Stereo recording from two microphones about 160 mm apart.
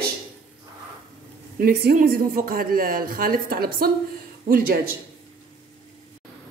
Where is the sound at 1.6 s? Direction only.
75° right (ahead or behind).